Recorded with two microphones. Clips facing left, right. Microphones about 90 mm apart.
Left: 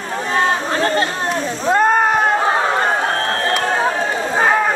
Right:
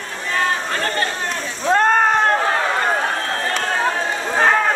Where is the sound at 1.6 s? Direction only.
5° left (ahead or behind).